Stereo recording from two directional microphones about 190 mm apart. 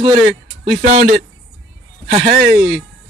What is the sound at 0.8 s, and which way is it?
Speech, 30° right (ahead or behind).